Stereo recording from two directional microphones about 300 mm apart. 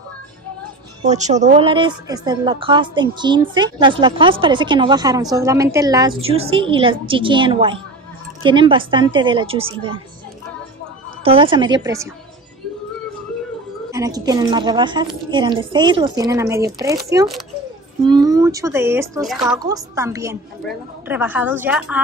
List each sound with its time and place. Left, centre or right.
1.0 s a woman's voice: right
11.2 s a woman's voice: centre
13.9 s a woman's voice: centre